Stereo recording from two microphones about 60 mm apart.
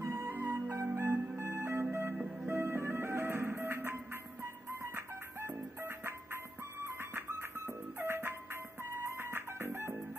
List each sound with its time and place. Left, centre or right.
0.0 s music: right